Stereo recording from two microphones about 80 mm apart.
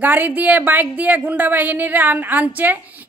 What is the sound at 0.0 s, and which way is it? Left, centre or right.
A woman's voice, right.